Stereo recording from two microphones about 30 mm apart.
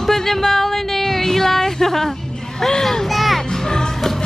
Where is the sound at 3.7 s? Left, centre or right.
Left.